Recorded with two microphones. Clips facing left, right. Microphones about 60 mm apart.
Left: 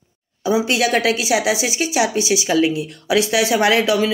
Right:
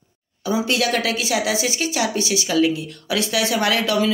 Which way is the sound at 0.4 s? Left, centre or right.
Centre.